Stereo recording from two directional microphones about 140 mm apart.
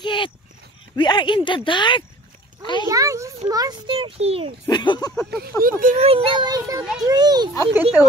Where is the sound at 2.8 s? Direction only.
25° right (ahead or behind).